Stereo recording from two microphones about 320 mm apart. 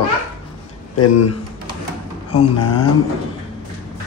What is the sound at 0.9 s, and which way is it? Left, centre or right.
Speech, left.